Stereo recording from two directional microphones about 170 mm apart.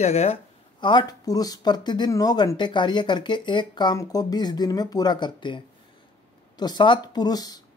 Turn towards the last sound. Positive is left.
turn(degrees=20)  # may be behind; listen again after turning